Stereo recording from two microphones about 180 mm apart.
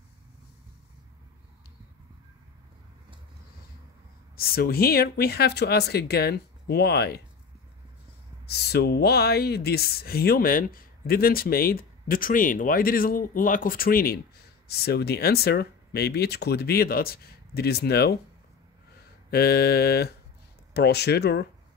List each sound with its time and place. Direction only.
4.4 s speech: 55° left (ahead or behind)
8.5 s speech: 65° left (ahead or behind)
19.3 s speech: 60° left (ahead or behind)